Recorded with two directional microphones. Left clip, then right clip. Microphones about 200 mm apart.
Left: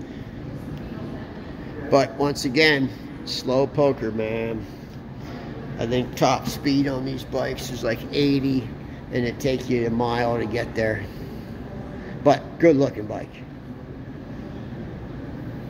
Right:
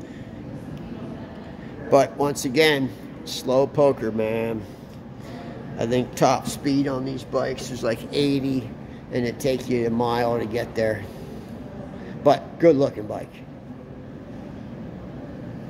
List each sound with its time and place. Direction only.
1.9 s speech: 15° right (ahead or behind)
5.8 s speech: 20° right (ahead or behind); by 11.0 s 5° right (ahead or behind)
12.2 s a man's voice: 5° right (ahead or behind)